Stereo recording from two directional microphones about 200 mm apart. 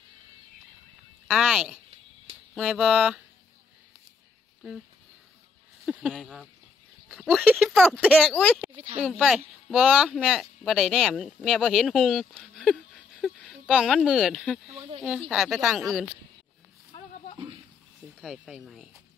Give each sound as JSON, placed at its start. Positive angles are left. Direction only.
{"t": 1.2, "sound": "speech", "side_deg": -5}
{"t": 5.9, "sound": "speech", "side_deg": 0}
{"t": 8.7, "sound": "a sound", "side_deg": -25}
{"t": 9.0, "sound": "speech", "side_deg": -5}
{"t": 18.2, "sound": "speech", "side_deg": 0}